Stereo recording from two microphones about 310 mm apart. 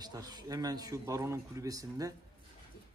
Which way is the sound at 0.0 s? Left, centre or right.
Centre.